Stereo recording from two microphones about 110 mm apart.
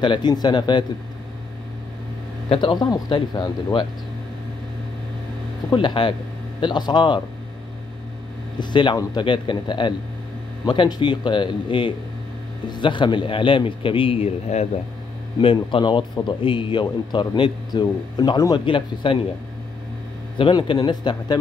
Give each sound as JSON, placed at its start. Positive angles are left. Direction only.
{"t": 0.0, "sound": "a man's voice", "side_deg": 45}
{"t": 2.5, "sound": "a man's voice", "side_deg": 50}
{"t": 5.7, "sound": "a man's voice", "side_deg": 45}
{"t": 8.5, "sound": "a man's voice", "side_deg": 45}
{"t": 15.4, "sound": "a man's voice", "side_deg": 50}
{"t": 20.3, "sound": "a man's voice", "side_deg": 50}